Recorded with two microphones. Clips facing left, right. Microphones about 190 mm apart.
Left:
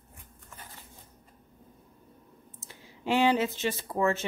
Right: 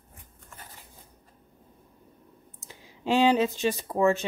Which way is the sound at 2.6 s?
15° right (ahead or behind).